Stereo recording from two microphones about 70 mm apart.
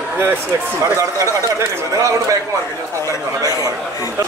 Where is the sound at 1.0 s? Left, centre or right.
Right.